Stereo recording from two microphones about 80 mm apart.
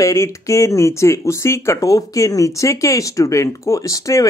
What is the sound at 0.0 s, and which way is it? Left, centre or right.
Speech, left.